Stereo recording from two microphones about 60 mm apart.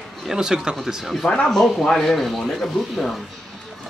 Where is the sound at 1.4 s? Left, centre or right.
Centre.